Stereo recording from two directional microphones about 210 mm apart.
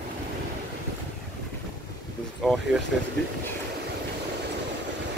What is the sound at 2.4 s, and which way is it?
Speech, centre (ahead or behind).